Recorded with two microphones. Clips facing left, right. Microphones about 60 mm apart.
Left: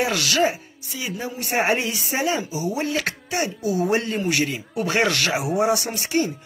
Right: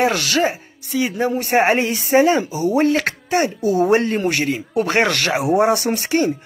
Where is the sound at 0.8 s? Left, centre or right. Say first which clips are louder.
Right 10 dB; right.